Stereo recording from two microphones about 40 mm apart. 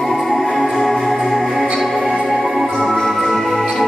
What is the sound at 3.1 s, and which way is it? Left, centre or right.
Music, centre.